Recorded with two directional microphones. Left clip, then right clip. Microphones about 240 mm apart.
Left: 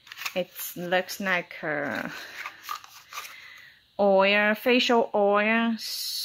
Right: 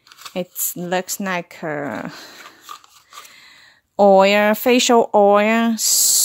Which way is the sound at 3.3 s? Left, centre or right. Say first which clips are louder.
Right 1 dB; right.